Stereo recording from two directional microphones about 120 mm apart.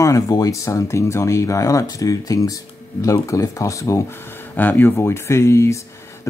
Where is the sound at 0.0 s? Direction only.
30° left (ahead or behind).